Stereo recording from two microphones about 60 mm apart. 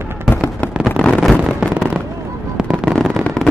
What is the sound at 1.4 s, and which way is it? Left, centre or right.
Fireworks, centre.